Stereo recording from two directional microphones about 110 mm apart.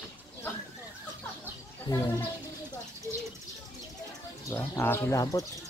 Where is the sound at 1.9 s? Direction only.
25° left (ahead or behind).